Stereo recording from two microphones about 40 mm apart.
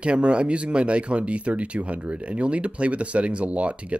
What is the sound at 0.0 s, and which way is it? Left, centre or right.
Speech, right.